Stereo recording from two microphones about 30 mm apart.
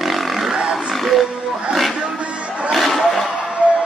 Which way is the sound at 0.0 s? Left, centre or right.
Centre.